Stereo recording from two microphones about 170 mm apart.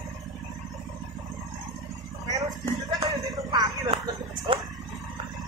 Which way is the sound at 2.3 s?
20° right (ahead or behind).